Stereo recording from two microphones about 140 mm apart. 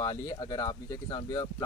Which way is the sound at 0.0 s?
30° left (ahead or behind).